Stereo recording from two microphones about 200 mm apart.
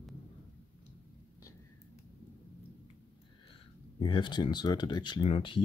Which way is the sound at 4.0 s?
25° left (ahead or behind).